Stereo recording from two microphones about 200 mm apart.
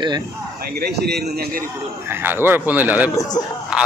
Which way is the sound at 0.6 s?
50° right (ahead or behind).